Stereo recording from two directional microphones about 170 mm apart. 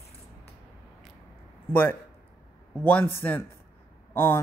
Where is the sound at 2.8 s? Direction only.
10° left (ahead or behind).